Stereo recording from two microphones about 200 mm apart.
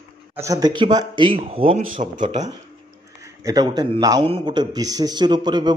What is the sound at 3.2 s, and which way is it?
A man's voice, 20° right (ahead or behind).